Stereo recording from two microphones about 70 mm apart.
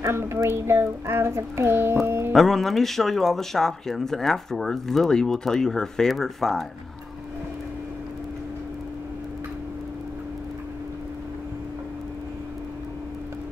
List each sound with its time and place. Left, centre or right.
0.0 s child singing: right
2.3 s speech: centre